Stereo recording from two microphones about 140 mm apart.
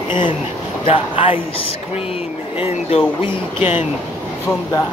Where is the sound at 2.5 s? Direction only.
40° left (ahead or behind).